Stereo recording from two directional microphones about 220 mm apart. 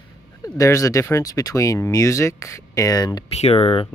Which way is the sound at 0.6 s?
15° left (ahead or behind).